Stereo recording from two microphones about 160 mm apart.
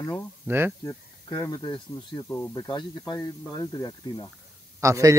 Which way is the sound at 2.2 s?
15° left (ahead or behind).